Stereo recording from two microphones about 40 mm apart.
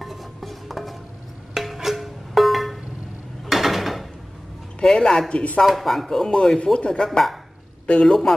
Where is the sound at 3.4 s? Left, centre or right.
Centre.